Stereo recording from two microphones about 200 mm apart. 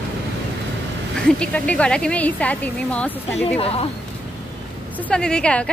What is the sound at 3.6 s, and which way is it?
Speech, 30° left (ahead or behind).